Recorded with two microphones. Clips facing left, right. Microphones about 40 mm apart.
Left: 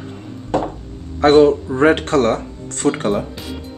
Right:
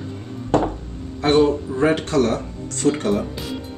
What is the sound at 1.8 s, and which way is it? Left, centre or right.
Speech, left.